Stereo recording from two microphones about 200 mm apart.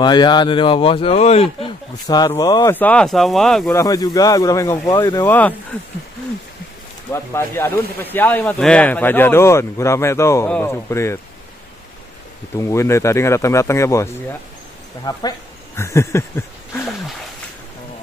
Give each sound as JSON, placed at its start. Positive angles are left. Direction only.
{"t": 0.0, "sound": "speech", "side_deg": 20}
{"t": 3.7, "sound": "speech", "side_deg": 15}
{"t": 7.1, "sound": "speech", "side_deg": 10}
{"t": 12.5, "sound": "speech", "side_deg": 15}